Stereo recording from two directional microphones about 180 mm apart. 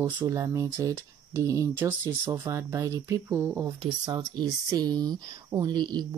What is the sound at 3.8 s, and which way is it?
Speech, 25° right (ahead or behind).